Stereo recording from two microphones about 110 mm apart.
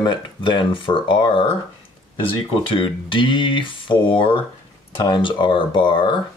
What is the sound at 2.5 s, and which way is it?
Speech, 50° left (ahead or behind).